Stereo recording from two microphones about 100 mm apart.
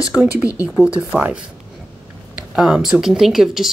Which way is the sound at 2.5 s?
5° right (ahead or behind).